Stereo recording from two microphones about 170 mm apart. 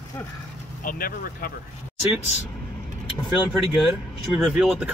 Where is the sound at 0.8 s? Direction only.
60° left (ahead or behind).